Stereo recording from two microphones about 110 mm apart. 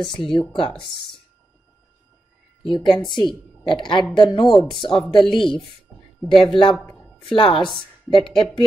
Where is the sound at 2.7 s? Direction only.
5° left (ahead or behind).